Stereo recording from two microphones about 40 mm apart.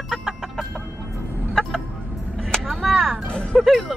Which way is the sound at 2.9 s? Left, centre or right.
Centre.